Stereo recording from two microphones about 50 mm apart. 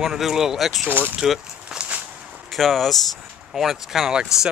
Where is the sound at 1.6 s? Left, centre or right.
Right.